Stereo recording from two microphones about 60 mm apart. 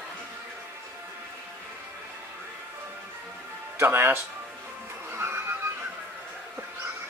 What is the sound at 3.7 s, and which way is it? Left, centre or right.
Speech, right.